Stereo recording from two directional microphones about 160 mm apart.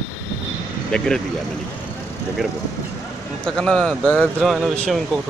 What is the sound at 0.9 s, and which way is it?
Speech, 5° left (ahead or behind).